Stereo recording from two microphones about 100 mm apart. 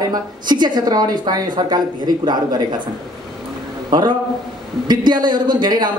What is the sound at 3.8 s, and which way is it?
A man's voice, 45° right (ahead or behind).